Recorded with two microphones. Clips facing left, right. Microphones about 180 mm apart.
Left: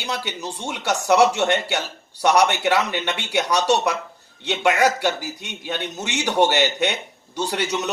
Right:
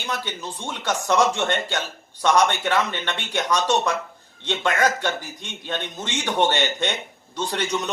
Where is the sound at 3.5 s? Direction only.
70° left (ahead or behind).